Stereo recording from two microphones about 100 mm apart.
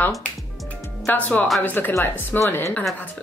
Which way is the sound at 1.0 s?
15° left (ahead or behind).